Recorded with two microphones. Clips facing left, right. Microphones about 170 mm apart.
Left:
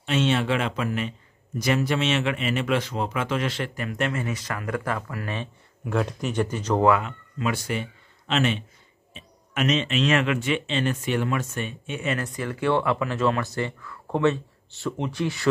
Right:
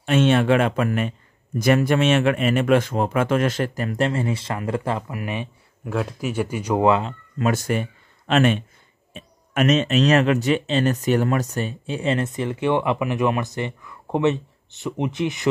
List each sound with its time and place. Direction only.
0.0 s speech: 50° right (ahead or behind); by 5.5 s 15° right (ahead or behind)
5.9 s speech: centre (ahead or behind)
6.9 s speech: 30° right (ahead or behind)
7.3 s speech: 45° right (ahead or behind); by 15.4 s 20° right (ahead or behind)